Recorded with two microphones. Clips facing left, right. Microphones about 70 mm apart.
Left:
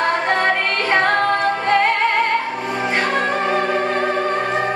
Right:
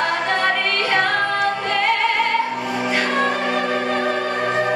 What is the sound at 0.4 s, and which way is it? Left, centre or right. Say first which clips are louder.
Music: left 1 dB; left.